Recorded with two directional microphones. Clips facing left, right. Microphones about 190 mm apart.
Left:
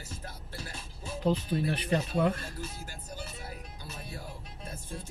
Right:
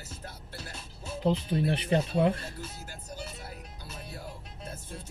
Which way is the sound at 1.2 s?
25° right (ahead or behind).